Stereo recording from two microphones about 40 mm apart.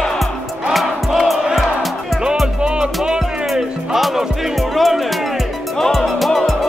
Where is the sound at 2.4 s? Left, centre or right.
Centre.